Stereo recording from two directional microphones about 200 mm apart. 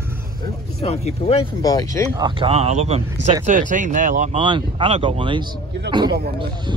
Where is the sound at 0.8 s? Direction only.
30° left (ahead or behind).